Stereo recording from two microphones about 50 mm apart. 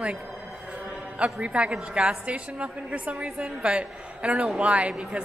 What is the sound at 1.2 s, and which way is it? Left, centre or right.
A woman's voice, right.